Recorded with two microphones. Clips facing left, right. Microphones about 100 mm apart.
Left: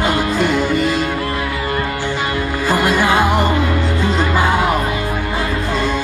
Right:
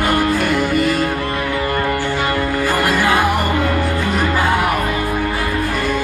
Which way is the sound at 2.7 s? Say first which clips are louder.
Left 3 dB; 20° left (ahead or behind).